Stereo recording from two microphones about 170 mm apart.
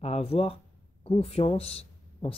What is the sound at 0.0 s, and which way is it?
Speech, 35° left (ahead or behind).